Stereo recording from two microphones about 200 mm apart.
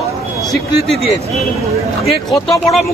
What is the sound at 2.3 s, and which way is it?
Speech, centre (ahead or behind).